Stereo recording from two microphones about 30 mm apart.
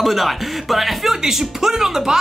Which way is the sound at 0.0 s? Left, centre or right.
Centre.